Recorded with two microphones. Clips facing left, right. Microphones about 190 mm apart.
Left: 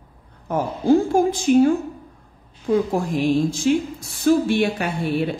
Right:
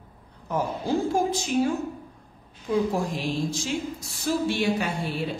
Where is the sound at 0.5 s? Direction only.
55° left (ahead or behind).